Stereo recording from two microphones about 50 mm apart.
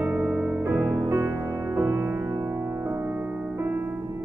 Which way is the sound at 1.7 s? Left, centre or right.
Right.